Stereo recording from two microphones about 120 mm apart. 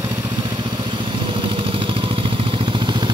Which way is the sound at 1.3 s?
45° right (ahead or behind).